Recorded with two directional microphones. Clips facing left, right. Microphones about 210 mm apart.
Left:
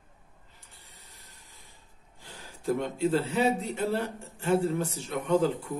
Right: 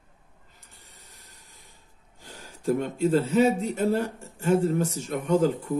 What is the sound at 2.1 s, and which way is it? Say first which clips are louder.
A man's voice: right 2 dB; 45° right (ahead or behind).